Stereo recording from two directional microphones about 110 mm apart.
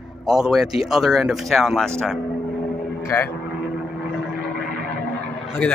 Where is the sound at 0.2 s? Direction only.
5° right (ahead or behind).